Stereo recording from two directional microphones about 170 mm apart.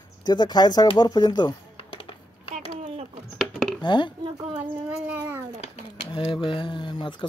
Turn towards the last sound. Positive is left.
turn(degrees=25)  # may be behind; listen again after turning